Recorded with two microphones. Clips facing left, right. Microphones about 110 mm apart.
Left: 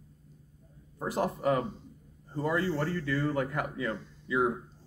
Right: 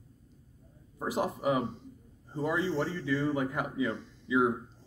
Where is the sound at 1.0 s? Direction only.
10° right (ahead or behind).